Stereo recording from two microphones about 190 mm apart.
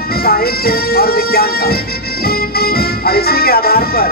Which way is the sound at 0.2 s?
55° left (ahead or behind).